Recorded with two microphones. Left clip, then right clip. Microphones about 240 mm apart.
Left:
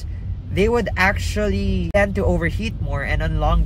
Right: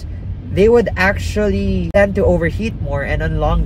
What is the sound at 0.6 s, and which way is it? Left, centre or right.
Speech, centre.